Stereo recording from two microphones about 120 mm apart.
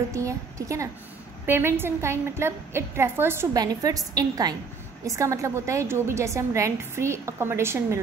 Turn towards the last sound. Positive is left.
turn(degrees=-20)  # may be behind; listen again after turning